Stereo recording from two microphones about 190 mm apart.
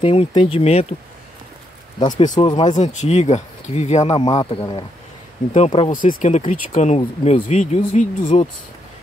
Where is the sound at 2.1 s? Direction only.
40° left (ahead or behind).